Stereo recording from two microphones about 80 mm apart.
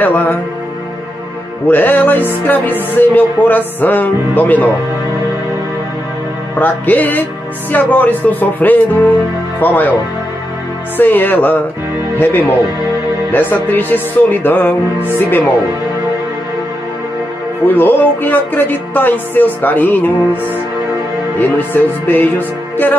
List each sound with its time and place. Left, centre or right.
0.0 s music: left
1.7 s music: left
6.6 s music: left
11.0 s music: left
17.6 s music: left
21.4 s music: left